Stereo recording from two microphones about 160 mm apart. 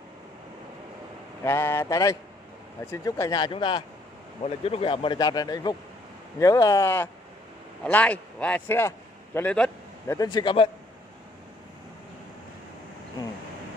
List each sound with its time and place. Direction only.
1.4 s a man's voice: 15° left (ahead or behind)
10.1 s speech: 25° left (ahead or behind)